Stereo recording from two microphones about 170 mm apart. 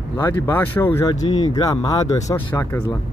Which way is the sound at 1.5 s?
20° left (ahead or behind).